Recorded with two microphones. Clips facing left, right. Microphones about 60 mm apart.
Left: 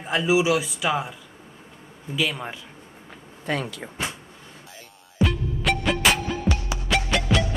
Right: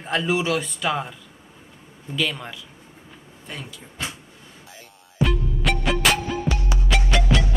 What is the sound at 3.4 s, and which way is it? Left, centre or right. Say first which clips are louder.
Speech: left 10 dB; left.